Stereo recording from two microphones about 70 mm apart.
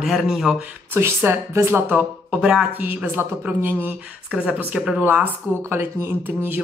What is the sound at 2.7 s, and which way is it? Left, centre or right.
Speech, right.